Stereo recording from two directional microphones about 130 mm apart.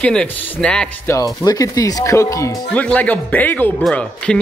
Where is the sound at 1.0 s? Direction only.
25° left (ahead or behind).